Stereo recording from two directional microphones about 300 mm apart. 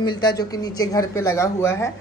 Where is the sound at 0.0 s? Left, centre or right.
Centre.